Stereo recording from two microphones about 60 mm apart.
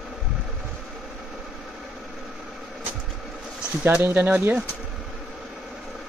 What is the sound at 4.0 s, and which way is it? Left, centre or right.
Speech, right.